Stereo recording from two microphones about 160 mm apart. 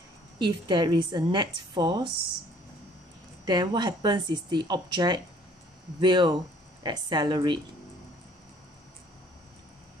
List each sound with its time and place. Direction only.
0.4 s a woman's voice: 30° right (ahead or behind)
3.4 s a woman's voice: 25° right (ahead or behind)